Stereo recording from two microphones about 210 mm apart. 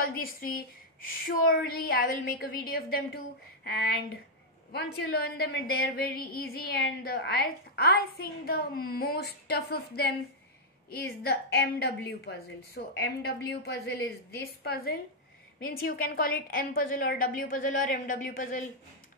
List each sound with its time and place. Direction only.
0.0 s a woman's voice: 45° left (ahead or behind)
4.7 s a woman's voice: 50° left (ahead or behind)